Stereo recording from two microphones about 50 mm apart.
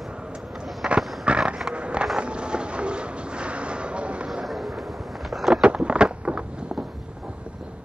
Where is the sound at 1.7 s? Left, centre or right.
Right.